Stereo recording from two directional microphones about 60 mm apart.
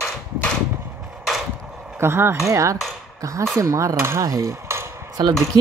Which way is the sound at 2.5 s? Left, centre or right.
Right.